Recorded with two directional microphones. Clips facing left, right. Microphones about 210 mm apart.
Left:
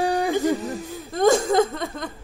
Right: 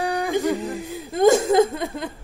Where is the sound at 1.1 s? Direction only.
Centre (ahead or behind).